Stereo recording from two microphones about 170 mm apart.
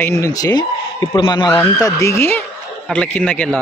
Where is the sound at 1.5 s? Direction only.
15° left (ahead or behind).